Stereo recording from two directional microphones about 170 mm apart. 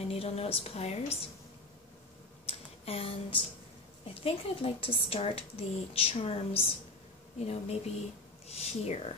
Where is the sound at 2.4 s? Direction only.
35° left (ahead or behind).